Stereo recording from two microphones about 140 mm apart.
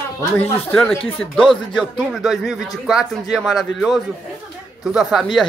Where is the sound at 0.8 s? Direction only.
5° left (ahead or behind).